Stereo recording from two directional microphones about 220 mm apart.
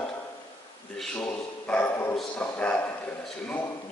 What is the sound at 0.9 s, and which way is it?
Speech, 5° left (ahead or behind).